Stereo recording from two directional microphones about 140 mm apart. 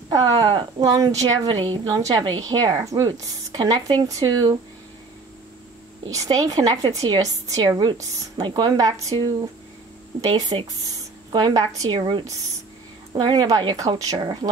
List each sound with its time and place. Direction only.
0.1 s a woman's voice: 30° right (ahead or behind)
6.1 s a woman's voice: 25° right (ahead or behind)
10.3 s a woman's voice: 30° right (ahead or behind)